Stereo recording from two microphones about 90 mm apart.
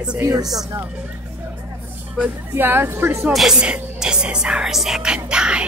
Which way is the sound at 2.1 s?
25° right (ahead or behind).